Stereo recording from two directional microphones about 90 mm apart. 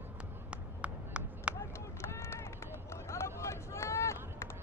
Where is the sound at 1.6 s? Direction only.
30° left (ahead or behind).